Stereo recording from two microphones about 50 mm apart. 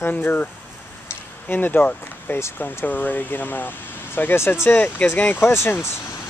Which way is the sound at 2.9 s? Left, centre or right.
Left.